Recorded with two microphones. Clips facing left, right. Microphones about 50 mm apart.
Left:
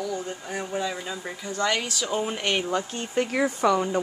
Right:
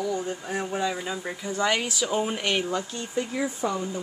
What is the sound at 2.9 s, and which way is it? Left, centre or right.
Speech, left.